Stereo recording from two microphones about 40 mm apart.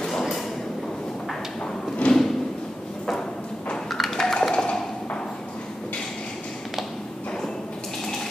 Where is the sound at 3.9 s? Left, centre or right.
Centre.